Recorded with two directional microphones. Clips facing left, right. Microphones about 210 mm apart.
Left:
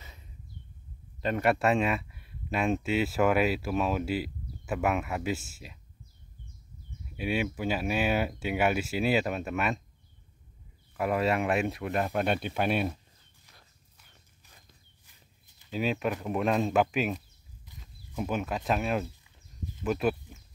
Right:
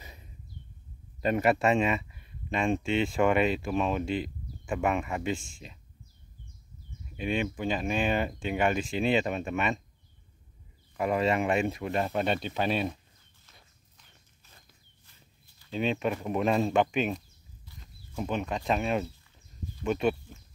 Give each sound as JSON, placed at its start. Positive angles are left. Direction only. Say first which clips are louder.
{"t": 1.2, "sound": "speech", "louder": "right 1 dB", "side_deg": -5}
{"t": 7.2, "sound": "speech", "louder": "even", "side_deg": 5}
{"t": 11.0, "sound": "speech", "louder": "right 1 dB", "side_deg": 0}
{"t": 15.0, "sound": "walk", "louder": "right 3 dB", "side_deg": 20}
{"t": 15.7, "sound": "speech", "louder": "right 1 dB", "side_deg": 5}